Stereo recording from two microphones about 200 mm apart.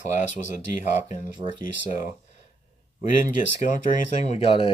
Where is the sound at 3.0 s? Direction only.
40° left (ahead or behind).